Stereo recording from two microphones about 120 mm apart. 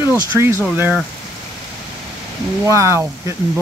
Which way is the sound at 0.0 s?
20° right (ahead or behind).